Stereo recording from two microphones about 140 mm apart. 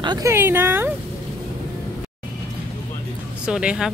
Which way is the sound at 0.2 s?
15° right (ahead or behind).